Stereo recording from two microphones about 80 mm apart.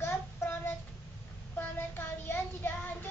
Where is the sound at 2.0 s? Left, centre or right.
Left.